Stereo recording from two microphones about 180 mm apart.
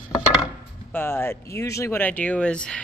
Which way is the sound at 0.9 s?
10° left (ahead or behind).